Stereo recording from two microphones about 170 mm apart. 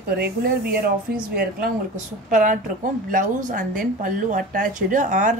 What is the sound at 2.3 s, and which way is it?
A woman's voice, 50° right (ahead or behind).